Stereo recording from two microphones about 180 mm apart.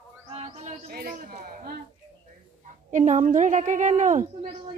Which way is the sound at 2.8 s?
45° right (ahead or behind).